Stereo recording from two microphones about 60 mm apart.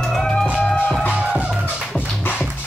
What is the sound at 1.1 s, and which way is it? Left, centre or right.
Music, right.